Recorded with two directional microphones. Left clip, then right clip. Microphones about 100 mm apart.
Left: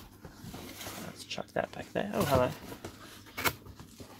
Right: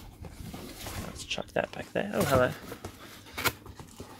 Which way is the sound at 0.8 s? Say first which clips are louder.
Right 6 dB; 20° right (ahead or behind).